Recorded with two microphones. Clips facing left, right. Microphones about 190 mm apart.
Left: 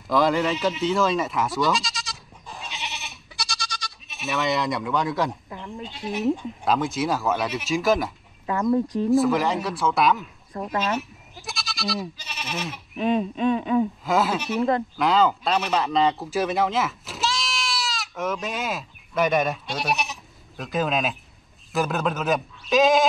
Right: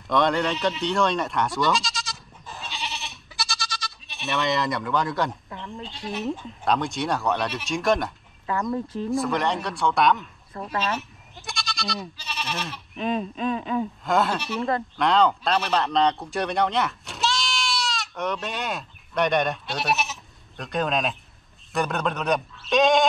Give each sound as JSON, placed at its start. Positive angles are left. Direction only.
{"t": 0.1, "sound": "bleat", "side_deg": 0}
{"t": 5.8, "sound": "speech", "side_deg": 5}
{"t": 8.5, "sound": "speech", "side_deg": 20}
{"t": 9.1, "sound": "speech", "side_deg": 0}
{"t": 10.5, "sound": "speech", "side_deg": 15}
{"t": 11.0, "sound": "speech", "side_deg": 0}